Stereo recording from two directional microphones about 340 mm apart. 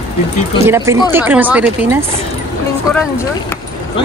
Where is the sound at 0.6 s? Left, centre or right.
Centre.